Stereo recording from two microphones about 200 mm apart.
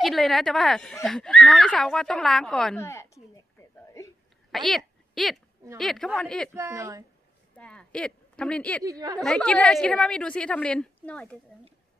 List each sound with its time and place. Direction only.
0.0 s a woman's voice: centre (ahead or behind)
2.8 s a sound: 15° left (ahead or behind)
4.0 s hiccup: 15° left (ahead or behind)
4.5 s a sound: centre (ahead or behind)
5.8 s a woman's voice: centre (ahead or behind)
6.5 s a woman's voice: 15° right (ahead or behind)
7.5 s a woman's voice: 5° left (ahead or behind)
8.8 s a woman's voice: 20° right (ahead or behind)
9.2 s a woman's voice: 5° left (ahead or behind)